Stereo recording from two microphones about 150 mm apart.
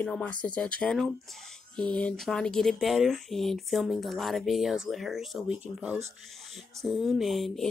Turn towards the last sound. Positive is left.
turn(degrees=0)  # may be behind; listen again after turning